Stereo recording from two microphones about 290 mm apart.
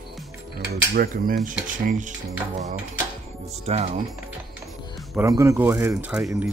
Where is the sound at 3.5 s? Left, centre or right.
Right.